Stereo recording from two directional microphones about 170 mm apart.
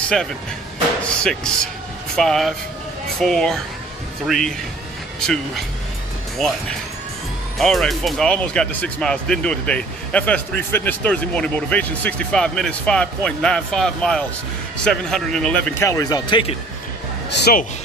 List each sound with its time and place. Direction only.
1.0 s speech: 5° left (ahead or behind)
7.5 s speech: centre (ahead or behind)
15.8 s speech: 20° left (ahead or behind)
17.3 s speech: 80° left